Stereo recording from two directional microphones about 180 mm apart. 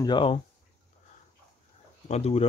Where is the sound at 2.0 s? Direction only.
35° left (ahead or behind).